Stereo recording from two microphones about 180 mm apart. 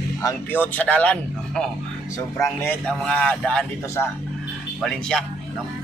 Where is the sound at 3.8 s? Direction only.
15° left (ahead or behind).